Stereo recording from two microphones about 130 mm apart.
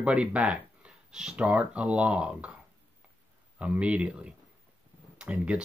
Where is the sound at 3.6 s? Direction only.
10° right (ahead or behind).